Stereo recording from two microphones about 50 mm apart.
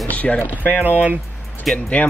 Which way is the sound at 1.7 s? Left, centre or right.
Left.